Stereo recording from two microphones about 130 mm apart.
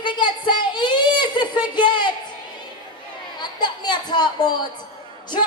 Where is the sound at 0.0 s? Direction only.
35° left (ahead or behind).